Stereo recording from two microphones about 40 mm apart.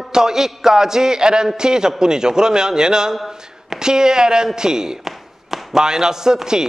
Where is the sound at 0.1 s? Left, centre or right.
Centre.